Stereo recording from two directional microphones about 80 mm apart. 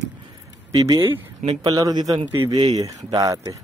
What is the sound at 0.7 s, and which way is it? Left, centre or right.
Speech, right.